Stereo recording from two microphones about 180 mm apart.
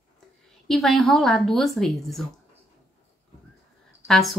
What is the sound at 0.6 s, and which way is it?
Speech, 5° left (ahead or behind).